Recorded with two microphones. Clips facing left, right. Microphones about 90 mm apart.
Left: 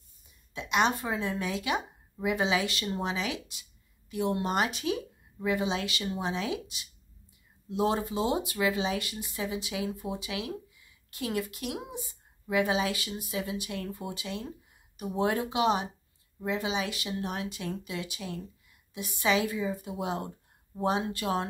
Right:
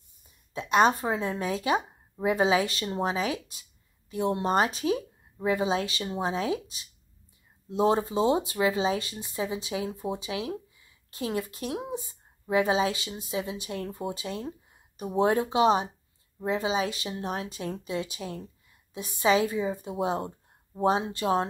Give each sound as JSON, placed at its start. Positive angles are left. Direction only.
{"t": 0.5, "sound": "speech", "side_deg": -35}